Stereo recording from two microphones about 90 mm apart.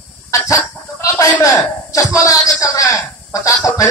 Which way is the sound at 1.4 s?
40° left (ahead or behind).